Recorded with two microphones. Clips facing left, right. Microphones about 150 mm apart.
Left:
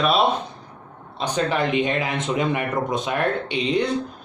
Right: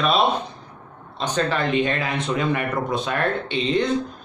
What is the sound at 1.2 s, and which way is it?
Speech, 15° left (ahead or behind).